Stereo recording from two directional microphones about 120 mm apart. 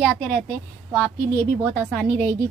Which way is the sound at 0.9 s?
15° left (ahead or behind).